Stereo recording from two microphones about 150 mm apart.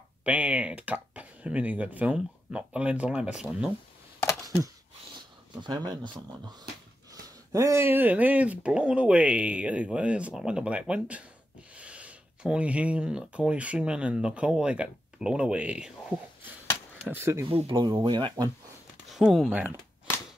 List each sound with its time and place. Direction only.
0.2 s speech: 10° right (ahead or behind)
5.1 s speech: 30° right (ahead or behind)
7.5 s speech: 20° right (ahead or behind)
17.5 s speech: 35° right (ahead or behind)
19.0 s speech: centre (ahead or behind)